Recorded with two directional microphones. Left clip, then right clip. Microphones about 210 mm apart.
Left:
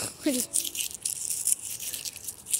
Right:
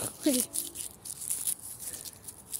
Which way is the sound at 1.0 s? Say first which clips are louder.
Left 10 dB; 15° right (ahead or behind).